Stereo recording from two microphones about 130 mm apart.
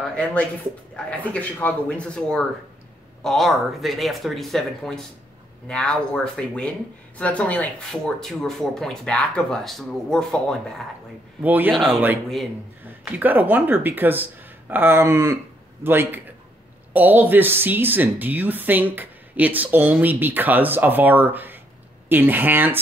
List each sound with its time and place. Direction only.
0.1 s speech: 10° left (ahead or behind)
11.4 s a woman's voice: 15° right (ahead or behind)
11.7 s speech: centre (ahead or behind)
13.0 s a woman's voice: 15° right (ahead or behind)